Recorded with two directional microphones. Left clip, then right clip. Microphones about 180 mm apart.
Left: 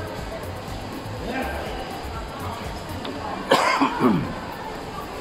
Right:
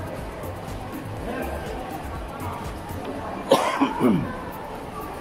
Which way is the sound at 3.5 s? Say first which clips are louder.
Left 1 dB; 10° right (ahead or behind).